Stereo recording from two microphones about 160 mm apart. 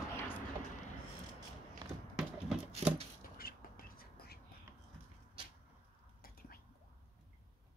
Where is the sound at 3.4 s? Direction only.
70° left (ahead or behind).